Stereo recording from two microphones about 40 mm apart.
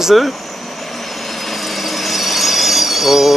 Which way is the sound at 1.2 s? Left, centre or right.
Centre.